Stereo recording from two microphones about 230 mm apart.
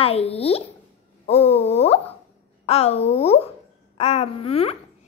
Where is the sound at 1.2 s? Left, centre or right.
Left.